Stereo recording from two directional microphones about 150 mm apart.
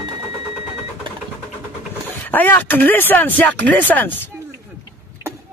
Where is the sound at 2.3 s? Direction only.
10° left (ahead or behind).